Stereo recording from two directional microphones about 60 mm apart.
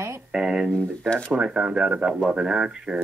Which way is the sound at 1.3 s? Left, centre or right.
Centre.